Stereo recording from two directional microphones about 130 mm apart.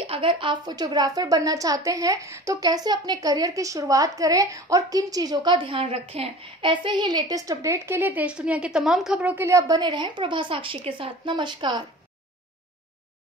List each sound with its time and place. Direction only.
0.1 s a woman's voice: 40° right (ahead or behind)